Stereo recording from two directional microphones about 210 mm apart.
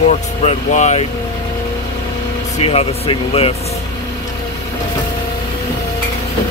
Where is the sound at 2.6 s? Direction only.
25° left (ahead or behind).